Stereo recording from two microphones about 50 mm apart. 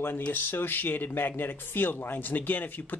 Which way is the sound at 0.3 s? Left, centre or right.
Left.